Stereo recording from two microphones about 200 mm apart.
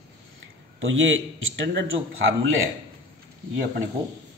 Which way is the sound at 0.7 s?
70° right (ahead or behind).